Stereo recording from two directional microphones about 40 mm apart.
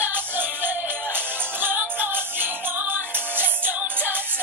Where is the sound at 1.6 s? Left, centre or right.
Right.